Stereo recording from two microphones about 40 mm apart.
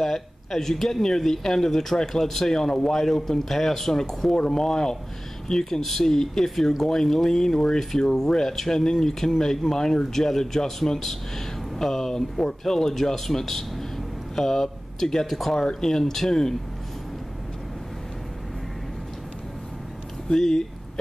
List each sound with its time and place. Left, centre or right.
0.0 s a man's voice: centre
15.5 s a man's voice: centre
20.3 s a man's voice: centre